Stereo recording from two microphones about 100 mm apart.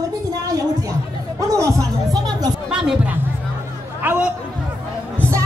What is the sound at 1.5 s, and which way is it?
Music, 35° right (ahead or behind).